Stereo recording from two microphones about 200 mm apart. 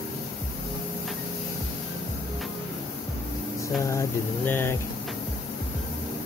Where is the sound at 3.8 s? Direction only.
10° left (ahead or behind).